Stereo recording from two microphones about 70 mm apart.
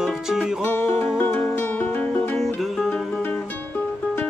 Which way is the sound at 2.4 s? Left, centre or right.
Centre.